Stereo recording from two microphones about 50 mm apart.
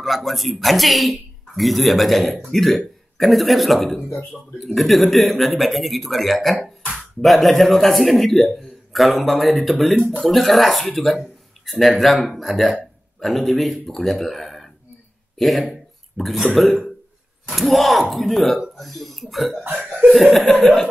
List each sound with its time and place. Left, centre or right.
0.0 s a man's voice: centre
15.7 s a sound: centre
17.5 s a man's voice: centre
19.6 s laughter: right